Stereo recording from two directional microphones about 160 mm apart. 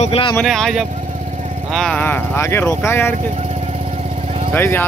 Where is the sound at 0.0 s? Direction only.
35° left (ahead or behind).